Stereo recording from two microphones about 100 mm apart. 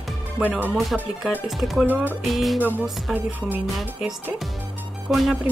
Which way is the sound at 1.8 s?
20° right (ahead or behind).